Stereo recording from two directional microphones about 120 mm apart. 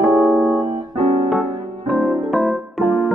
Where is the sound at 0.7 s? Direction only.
65° right (ahead or behind).